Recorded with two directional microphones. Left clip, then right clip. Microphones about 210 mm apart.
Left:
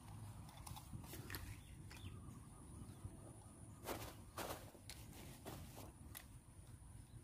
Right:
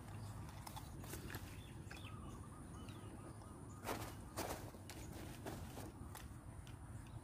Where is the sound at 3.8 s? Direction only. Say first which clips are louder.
Right 3 dB; 20° left (ahead or behind).